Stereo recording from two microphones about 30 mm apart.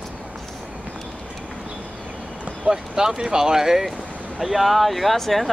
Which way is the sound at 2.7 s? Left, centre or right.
Centre.